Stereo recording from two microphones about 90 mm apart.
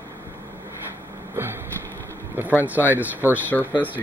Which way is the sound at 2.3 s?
20° right (ahead or behind).